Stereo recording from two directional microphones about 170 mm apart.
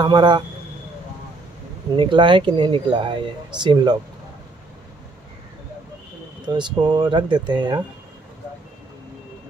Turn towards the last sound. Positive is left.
turn(degrees=-25)  # may be behind; listen again after turning